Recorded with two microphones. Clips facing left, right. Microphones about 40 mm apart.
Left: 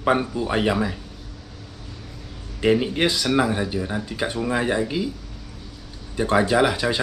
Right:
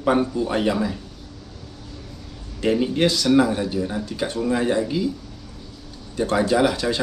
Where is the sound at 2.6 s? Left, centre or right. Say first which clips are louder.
Even; left.